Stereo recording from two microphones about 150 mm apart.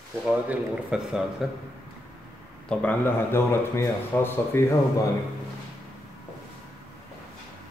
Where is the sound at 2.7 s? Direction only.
10° left (ahead or behind).